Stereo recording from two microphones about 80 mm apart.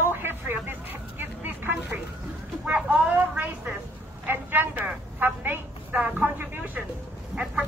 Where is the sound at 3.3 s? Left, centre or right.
Right.